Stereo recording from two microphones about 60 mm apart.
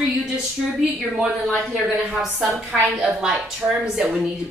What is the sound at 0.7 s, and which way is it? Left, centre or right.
Speech, centre.